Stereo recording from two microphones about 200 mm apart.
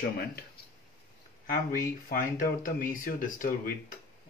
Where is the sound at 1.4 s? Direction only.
45° left (ahead or behind).